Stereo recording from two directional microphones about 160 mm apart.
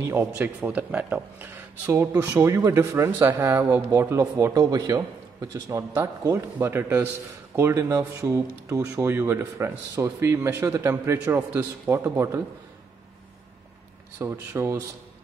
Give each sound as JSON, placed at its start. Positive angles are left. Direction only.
{"t": 0.0, "sound": "speech", "side_deg": -15}
{"t": 14.2, "sound": "speech", "side_deg": -15}